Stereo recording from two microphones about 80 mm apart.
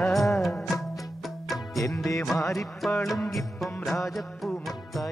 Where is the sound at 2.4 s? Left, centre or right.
Left.